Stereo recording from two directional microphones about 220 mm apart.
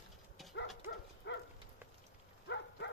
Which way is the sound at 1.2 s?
55° left (ahead or behind).